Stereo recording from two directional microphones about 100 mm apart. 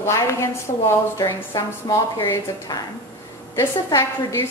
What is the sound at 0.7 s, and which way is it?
Speech, 75° left (ahead or behind).